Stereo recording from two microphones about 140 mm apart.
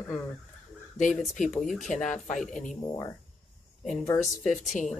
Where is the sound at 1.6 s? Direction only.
65° left (ahead or behind).